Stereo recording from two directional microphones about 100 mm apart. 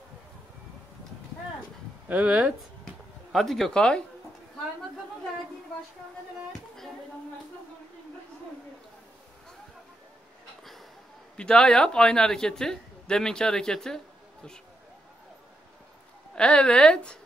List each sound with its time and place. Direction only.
2.0 s speech: 15° right (ahead or behind)
2.8 s a sound: centre (ahead or behind)
11.3 s speech: 10° left (ahead or behind)
16.3 s speech: 10° left (ahead or behind)